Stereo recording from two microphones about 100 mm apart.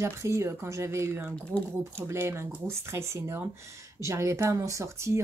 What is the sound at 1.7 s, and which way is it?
Speech, 25° right (ahead or behind).